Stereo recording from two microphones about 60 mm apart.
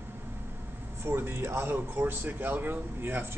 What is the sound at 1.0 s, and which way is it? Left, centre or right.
Speech, right.